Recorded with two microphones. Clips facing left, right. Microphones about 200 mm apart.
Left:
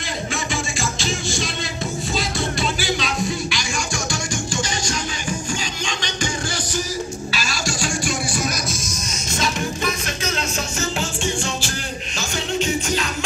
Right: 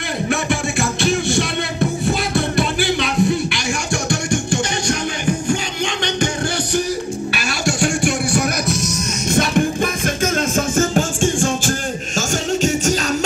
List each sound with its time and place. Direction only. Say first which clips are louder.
0.3 s music: right 8 dB; 60° right (ahead or behind); by 13.0 s 45° right (ahead or behind)